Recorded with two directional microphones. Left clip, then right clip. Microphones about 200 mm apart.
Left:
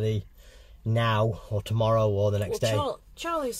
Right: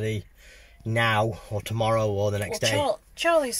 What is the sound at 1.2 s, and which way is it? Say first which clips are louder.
Speech: even; centre (ahead or behind).